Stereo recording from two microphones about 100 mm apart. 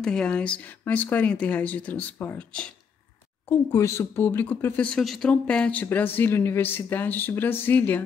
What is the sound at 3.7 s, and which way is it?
Speech, 30° left (ahead or behind).